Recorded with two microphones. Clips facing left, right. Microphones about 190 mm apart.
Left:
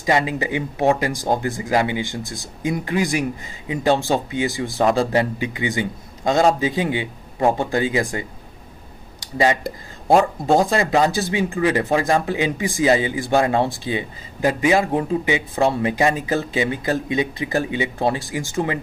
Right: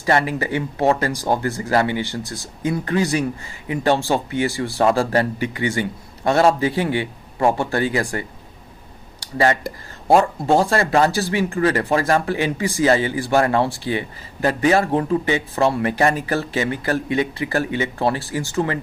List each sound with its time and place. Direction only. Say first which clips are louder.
0.0 s speech: even; 15° left (ahead or behind)